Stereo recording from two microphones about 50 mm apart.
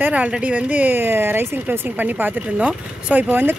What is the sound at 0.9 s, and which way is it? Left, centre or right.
Speech, right.